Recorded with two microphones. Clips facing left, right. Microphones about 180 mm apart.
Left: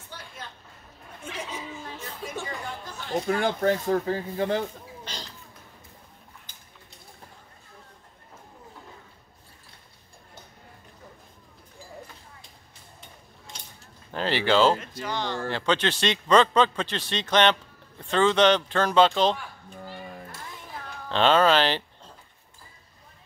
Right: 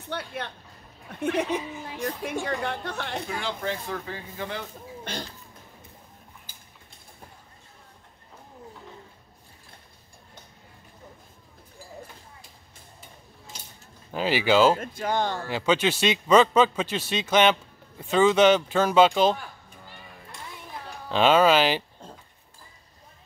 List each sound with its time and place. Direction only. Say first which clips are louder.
0.1 s music: right 10 dB; 65° right (ahead or behind)
1.2 s speech: right 11 dB; 65° right (ahead or behind)
1.7 s a man's voice: right 6 dB; 15° right (ahead or behind)
2.4 s speech: right 6 dB; 70° right (ahead or behind)
3.3 s speech: left 11 dB; 50° left (ahead or behind)
5.0 s a sound: right 6 dB; 55° right (ahead or behind)
14.1 s a man's voice: right 1 dB; 10° right (ahead or behind)
14.8 s speech: right 5 dB; 50° right (ahead or behind)
15.4 s a man's voice: left 1 dB; 10° right (ahead or behind)
19.8 s a sound: left 10 dB; 45° left (ahead or behind)
21.1 s a man's voice: right 1 dB; 10° right (ahead or behind)